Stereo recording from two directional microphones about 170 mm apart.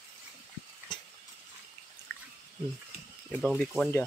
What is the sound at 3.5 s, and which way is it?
Speech, centre (ahead or behind).